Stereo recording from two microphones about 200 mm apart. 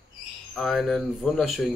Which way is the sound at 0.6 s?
Centre (ahead or behind).